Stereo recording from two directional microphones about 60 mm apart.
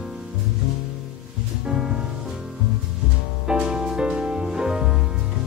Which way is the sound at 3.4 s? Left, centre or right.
Centre.